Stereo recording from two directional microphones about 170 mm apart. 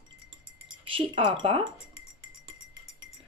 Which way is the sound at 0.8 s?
30° right (ahead or behind).